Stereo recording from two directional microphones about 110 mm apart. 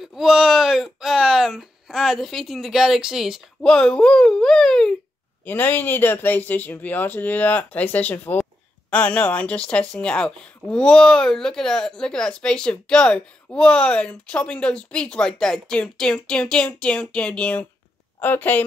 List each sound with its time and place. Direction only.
0.0 s speech: 5° right (ahead or behind)
5.4 s speech: 15° left (ahead or behind)